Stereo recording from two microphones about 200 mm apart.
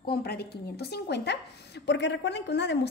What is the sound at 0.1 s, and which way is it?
Speech, 55° left (ahead or behind).